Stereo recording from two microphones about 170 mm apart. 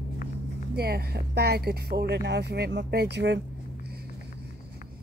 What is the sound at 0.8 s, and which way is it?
Speech, 70° right (ahead or behind).